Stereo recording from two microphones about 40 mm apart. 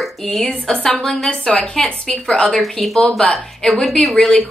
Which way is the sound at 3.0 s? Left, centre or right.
Left.